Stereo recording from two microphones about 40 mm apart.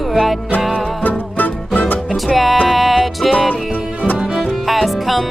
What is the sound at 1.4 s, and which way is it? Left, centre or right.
Music, left.